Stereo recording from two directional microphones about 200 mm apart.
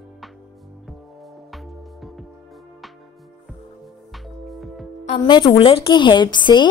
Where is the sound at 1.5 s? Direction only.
Centre (ahead or behind).